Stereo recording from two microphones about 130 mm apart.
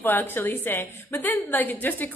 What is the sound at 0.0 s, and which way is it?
A woman's voice, 15° left (ahead or behind).